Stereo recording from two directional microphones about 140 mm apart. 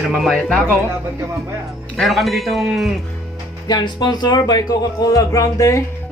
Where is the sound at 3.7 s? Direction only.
30° left (ahead or behind).